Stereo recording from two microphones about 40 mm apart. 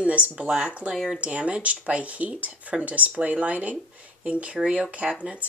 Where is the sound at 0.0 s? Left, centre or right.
Right.